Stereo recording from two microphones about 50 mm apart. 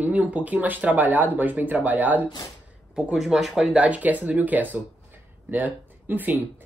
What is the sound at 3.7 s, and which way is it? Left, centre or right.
Speech, right.